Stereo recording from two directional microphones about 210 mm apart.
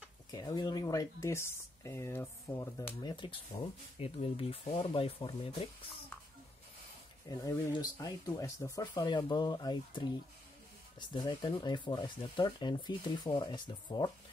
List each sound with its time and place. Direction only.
0.3 s speech: 20° left (ahead or behind)
7.2 s speech: 15° left (ahead or behind)
11.1 s speech: 20° left (ahead or behind)